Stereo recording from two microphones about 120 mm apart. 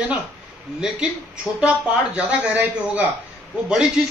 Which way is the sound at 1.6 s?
10° right (ahead or behind).